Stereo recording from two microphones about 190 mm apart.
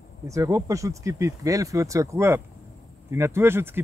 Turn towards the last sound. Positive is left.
turn(degrees=-10)  # may be behind; listen again after turning